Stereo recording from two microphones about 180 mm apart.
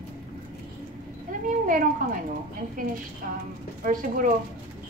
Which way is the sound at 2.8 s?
50° right (ahead or behind).